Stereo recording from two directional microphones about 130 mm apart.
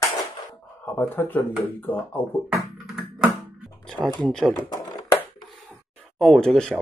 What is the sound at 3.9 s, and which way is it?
Speech, 5° left (ahead or behind).